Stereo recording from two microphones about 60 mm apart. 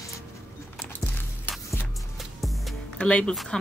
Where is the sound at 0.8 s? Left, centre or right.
Left.